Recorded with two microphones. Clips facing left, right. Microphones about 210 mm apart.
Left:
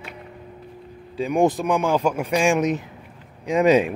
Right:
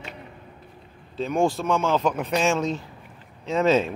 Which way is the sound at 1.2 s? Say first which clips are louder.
Left 3 dB; 15° left (ahead or behind).